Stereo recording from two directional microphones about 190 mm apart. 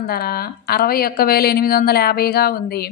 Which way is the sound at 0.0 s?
55° left (ahead or behind).